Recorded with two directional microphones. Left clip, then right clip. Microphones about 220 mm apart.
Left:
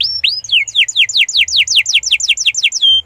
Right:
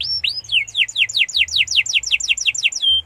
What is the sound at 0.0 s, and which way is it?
Bird, 30° left (ahead or behind).